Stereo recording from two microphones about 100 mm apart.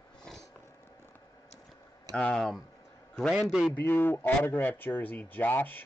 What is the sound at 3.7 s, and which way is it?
Speech, 20° left (ahead or behind).